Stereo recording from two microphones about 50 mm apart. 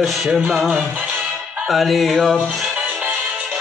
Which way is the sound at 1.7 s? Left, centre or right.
Centre.